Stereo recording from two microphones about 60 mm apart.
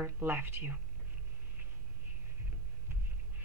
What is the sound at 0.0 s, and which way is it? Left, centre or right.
Speech, right.